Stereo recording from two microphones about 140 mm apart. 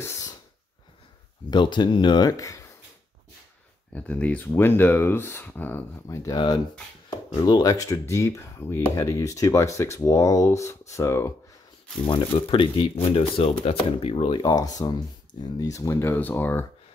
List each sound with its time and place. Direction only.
0.0 s a sound: 20° left (ahead or behind)
1.5 s speech: 35° left (ahead or behind)
3.9 s speech: 10° left (ahead or behind)
12.1 s speech: 40° left (ahead or behind)
14.4 s speech: 25° left (ahead or behind)